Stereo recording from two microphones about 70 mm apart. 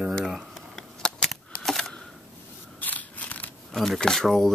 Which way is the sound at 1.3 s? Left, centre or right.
Centre.